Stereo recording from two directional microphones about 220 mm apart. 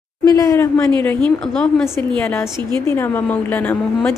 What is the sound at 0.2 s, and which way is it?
Speech, 15° left (ahead or behind).